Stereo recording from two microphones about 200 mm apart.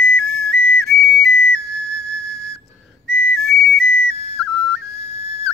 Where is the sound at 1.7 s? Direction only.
Centre (ahead or behind).